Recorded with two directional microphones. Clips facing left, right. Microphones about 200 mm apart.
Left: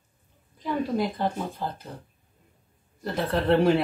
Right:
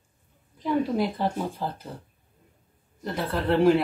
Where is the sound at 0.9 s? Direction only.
5° right (ahead or behind).